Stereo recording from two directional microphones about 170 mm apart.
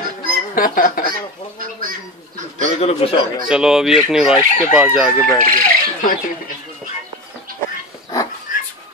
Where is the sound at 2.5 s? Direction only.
40° left (ahead or behind).